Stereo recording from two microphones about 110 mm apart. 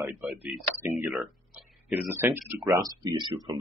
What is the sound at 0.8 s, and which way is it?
Speech, 20° right (ahead or behind).